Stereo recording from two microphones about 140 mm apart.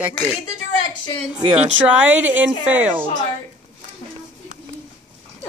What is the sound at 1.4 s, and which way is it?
Speech, 40° right (ahead or behind).